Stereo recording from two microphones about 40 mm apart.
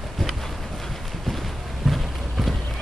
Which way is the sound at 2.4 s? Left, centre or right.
Centre.